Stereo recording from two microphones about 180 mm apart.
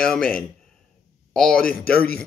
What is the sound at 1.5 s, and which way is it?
Speech, 55° left (ahead or behind).